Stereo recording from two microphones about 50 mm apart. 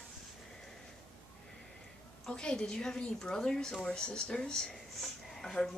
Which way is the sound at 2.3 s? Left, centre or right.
Centre.